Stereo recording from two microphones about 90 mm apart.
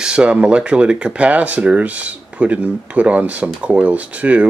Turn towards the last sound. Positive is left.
turn(degrees=-15)  # may be behind; listen again after turning